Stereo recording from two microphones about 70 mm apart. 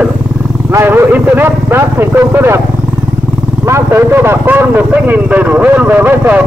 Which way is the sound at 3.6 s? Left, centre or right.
Right.